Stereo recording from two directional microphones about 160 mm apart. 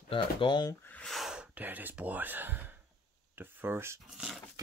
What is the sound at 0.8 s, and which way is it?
Speech, 5° left (ahead or behind).